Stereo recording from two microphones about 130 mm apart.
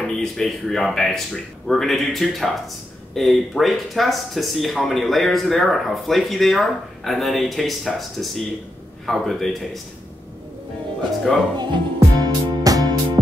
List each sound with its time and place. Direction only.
0.0 s speech: 5° left (ahead or behind)
11.5 s music: 35° right (ahead or behind)